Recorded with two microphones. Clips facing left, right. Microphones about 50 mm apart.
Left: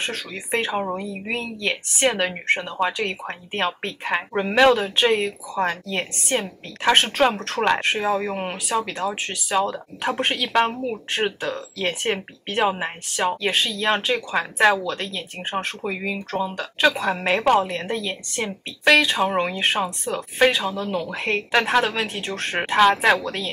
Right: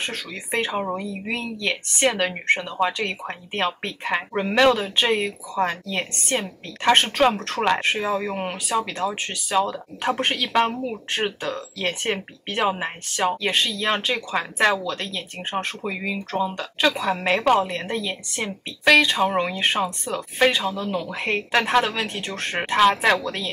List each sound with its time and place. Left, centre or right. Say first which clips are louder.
0.0 s speech: left 1 dB; centre
20.7 s speech: left 1 dB; centre
21.1 s speech: left 1 dB; centre